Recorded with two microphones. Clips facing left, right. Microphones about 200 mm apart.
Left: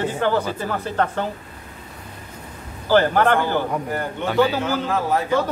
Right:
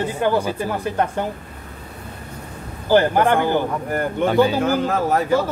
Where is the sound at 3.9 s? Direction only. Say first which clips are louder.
Right 5 dB; 50° right (ahead or behind).